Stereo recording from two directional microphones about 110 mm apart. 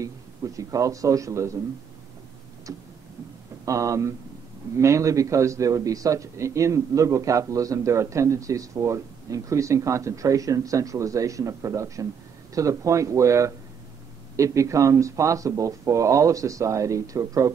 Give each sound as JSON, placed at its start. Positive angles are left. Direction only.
{"t": 0.6, "sound": "a man's voice", "side_deg": -30}
{"t": 3.6, "sound": "a man's voice", "side_deg": -30}